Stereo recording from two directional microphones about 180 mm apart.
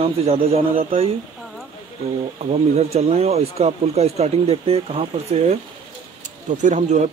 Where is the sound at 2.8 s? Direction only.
35° right (ahead or behind).